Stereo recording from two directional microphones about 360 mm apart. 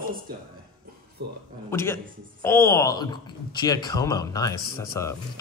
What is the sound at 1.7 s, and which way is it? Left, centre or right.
Speech, centre.